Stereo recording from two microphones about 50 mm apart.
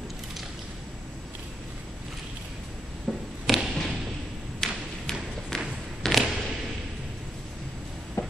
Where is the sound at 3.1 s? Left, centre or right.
Centre.